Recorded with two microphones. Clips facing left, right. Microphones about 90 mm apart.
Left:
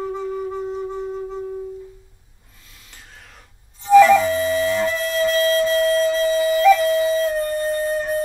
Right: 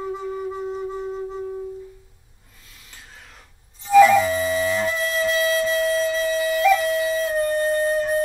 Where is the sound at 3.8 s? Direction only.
45° left (ahead or behind).